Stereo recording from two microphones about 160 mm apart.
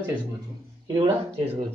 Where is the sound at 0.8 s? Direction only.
30° right (ahead or behind).